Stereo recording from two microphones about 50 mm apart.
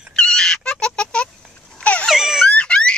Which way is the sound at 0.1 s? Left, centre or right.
Centre.